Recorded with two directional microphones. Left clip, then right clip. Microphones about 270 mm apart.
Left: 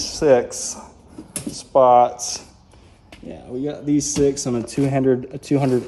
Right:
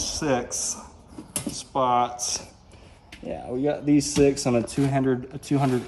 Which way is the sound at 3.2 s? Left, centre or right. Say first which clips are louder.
Right 2 dB; centre.